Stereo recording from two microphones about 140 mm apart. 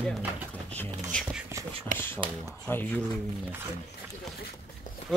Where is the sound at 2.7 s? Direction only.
15° left (ahead or behind).